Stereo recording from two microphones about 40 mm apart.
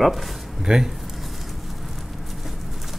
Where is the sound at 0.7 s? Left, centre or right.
Centre.